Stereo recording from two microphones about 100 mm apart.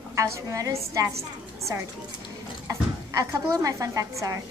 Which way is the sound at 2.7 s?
30° right (ahead or behind).